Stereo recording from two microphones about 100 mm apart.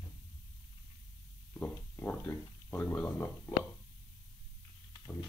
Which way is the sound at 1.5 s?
20° left (ahead or behind).